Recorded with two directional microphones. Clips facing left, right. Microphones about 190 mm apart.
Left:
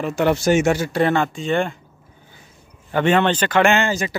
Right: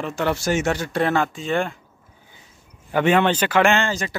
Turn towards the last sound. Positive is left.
turn(degrees=10)  # may be behind; listen again after turning